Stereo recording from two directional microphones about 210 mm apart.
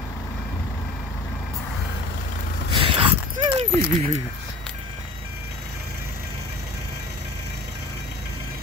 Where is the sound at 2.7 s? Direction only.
25° right (ahead or behind).